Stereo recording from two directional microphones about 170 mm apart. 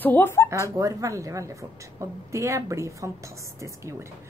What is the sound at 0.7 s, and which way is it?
A woman's voice, 20° right (ahead or behind).